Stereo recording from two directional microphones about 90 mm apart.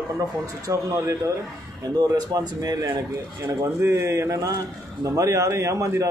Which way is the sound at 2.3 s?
45° right (ahead or behind).